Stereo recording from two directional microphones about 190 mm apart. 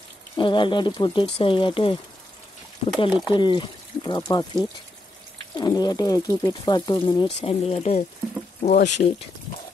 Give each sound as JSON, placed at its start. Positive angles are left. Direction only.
{"t": 0.4, "sound": "speech", "side_deg": 25}
{"t": 3.1, "sound": "speech", "side_deg": -5}
{"t": 3.3, "sound": "speech", "side_deg": 25}